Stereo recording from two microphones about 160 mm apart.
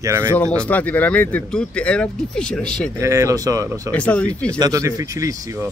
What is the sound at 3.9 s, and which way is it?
Speech, 10° left (ahead or behind).